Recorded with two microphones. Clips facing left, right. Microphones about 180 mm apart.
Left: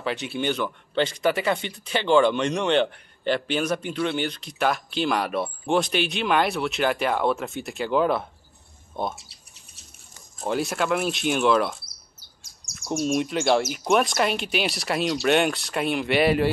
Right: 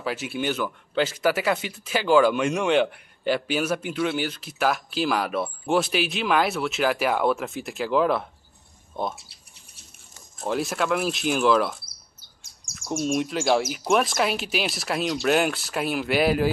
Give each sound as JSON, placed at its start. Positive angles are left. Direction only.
{"t": 0.0, "sound": "speech", "side_deg": -5}
{"t": 10.4, "sound": "speech", "side_deg": 0}
{"t": 12.7, "sound": "speech", "side_deg": 0}